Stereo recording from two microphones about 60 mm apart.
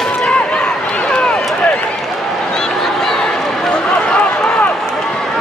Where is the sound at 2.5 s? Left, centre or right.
Centre.